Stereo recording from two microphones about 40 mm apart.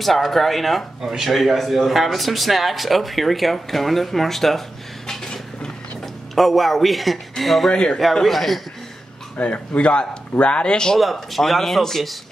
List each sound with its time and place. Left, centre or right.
0.0 s speech: centre
1.4 s speech: centre
6.3 s speech: centre
7.7 s speech: left
8.0 s speech: centre
9.4 s speech: left
11.0 s speech: centre